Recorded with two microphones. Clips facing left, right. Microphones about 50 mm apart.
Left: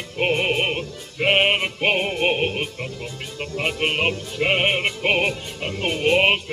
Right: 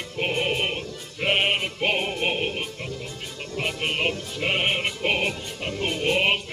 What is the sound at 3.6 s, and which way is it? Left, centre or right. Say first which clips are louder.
Music: left 4 dB; left.